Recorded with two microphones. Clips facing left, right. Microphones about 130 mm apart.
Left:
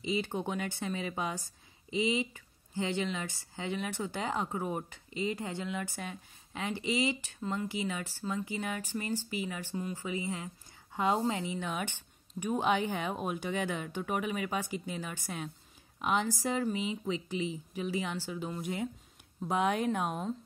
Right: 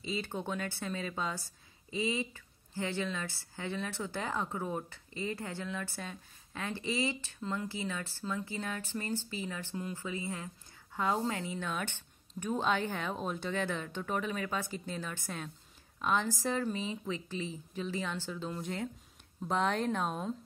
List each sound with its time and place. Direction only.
0.0 s a woman's voice: 15° left (ahead or behind)